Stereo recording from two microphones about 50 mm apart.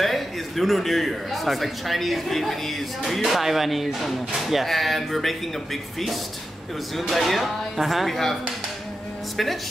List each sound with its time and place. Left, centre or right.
0.0 s a man's voice: centre